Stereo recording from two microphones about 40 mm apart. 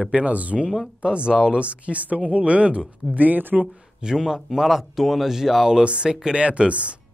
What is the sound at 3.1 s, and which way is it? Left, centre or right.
Speech, right.